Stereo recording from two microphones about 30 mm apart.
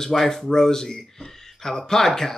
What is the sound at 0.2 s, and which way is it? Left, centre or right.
Speech, centre.